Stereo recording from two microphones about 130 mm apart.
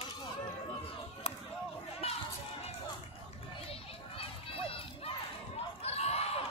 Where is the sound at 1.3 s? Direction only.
50° left (ahead or behind).